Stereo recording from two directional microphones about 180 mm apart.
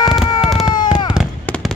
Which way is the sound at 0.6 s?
25° left (ahead or behind).